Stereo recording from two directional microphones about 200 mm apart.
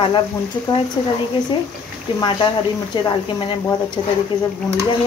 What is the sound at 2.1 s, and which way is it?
Speech, 25° left (ahead or behind).